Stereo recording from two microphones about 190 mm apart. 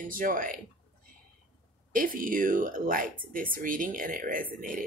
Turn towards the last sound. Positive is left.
turn(degrees=-45)  # may be behind; listen again after turning